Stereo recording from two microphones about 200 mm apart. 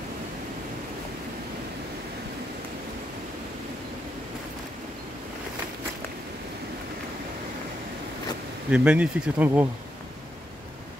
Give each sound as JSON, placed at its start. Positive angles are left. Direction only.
{"t": 8.6, "sound": "speech", "side_deg": -5}